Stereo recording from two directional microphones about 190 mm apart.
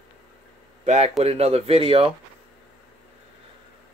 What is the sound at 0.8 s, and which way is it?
Speech, 35° right (ahead or behind).